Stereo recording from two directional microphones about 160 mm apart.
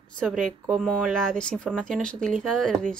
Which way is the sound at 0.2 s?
Centre (ahead or behind).